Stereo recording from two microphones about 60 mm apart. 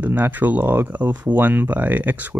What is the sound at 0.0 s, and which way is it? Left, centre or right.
Speech, right.